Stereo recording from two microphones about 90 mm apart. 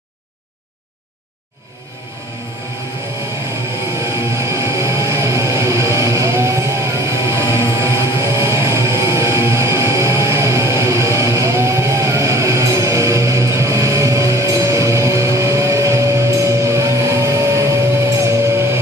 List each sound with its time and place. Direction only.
4.0 s music: 30° right (ahead or behind)